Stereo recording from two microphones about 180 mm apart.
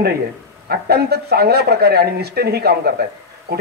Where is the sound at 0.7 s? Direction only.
65° right (ahead or behind).